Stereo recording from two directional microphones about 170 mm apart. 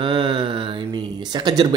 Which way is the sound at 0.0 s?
30° right (ahead or behind).